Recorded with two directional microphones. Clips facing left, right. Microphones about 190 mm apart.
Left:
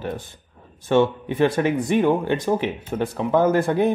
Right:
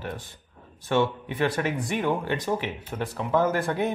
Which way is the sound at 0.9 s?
25° left (ahead or behind).